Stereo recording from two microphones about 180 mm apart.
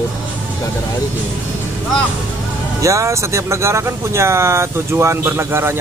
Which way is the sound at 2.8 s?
15° right (ahead or behind).